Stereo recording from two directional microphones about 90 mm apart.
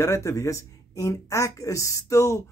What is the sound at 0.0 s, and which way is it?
Speech, 35° left (ahead or behind).